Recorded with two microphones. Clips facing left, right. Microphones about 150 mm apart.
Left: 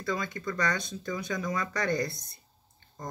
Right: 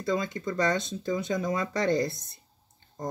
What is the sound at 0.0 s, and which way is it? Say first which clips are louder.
Speech: right 4 dB; 25° right (ahead or behind).